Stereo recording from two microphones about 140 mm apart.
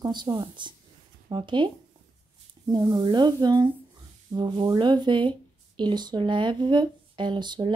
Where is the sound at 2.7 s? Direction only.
30° right (ahead or behind).